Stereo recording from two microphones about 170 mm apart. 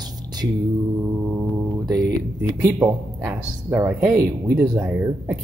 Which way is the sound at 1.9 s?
20° right (ahead or behind).